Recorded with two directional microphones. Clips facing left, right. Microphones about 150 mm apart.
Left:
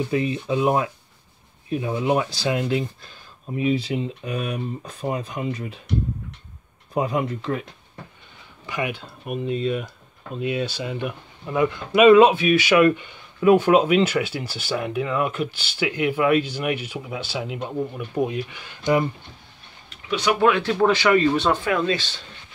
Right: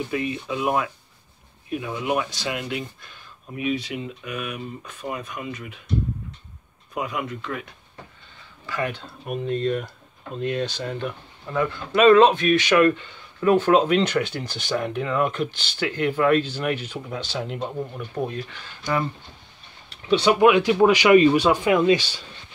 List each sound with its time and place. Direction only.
0.1 s speech: 30° left (ahead or behind)
6.9 s speech: 30° left (ahead or behind)
8.6 s speech: 15° left (ahead or behind)
19.9 s a sound: 30° right (ahead or behind)
20.3 s speech: 15° right (ahead or behind)